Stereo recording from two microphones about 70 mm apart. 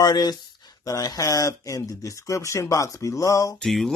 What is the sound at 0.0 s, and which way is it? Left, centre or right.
Speech, left.